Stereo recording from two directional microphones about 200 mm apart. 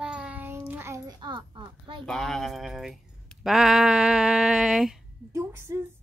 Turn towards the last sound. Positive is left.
turn(degrees=-15)  # may be behind; listen again after turning